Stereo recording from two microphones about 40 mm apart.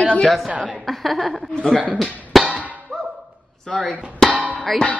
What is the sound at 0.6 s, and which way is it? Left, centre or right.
Speech, centre.